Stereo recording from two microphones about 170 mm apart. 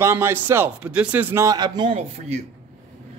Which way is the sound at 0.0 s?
15° right (ahead or behind).